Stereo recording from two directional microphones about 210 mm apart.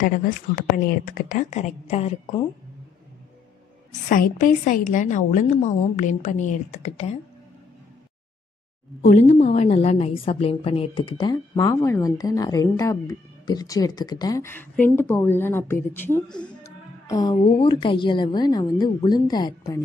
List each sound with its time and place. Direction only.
0.0 s a woman's voice: 40° left (ahead or behind)
4.1 s a woman's voice: 40° left (ahead or behind)
9.4 s a woman's voice: 35° left (ahead or behind); by 19.8 s 20° left (ahead or behind)